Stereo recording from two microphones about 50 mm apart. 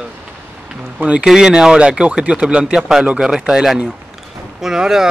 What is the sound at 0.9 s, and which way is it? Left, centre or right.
Speech, right.